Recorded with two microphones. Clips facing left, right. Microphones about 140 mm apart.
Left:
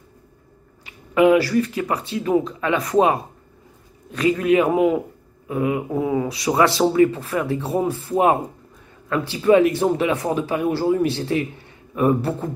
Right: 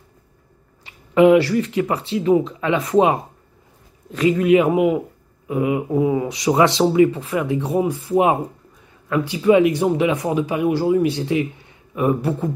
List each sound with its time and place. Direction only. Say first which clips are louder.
0.8 s speech: right 3 dB; 25° right (ahead or behind)